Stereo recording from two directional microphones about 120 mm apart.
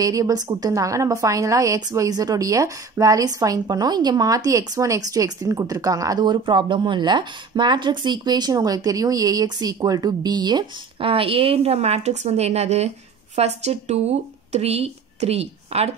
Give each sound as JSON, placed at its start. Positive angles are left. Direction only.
{"t": 0.0, "sound": "a woman's voice", "side_deg": -30}
{"t": 11.1, "sound": "a woman's voice", "side_deg": -50}